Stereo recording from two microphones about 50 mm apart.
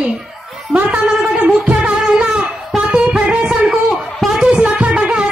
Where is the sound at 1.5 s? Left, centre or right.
Right.